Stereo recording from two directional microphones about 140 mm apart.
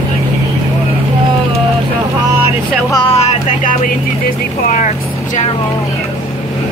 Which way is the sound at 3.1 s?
50° left (ahead or behind).